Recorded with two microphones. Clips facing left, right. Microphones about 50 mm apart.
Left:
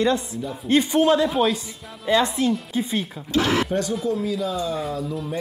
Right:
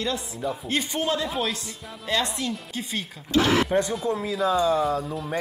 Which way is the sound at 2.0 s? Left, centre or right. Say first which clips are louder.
Left 7 dB; centre.